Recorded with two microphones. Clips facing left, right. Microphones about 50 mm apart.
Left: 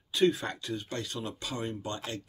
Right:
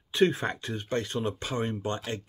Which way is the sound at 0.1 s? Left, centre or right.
Right.